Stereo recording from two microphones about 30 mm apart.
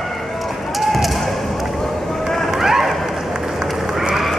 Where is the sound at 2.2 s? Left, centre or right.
Centre.